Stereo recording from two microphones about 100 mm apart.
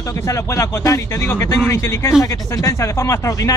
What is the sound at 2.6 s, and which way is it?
Speech, 30° left (ahead or behind).